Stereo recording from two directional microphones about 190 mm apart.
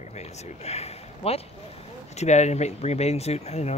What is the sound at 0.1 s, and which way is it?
Speech, 35° left (ahead or behind).